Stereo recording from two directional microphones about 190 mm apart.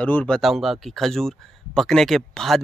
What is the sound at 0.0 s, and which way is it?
Speech, 5° left (ahead or behind).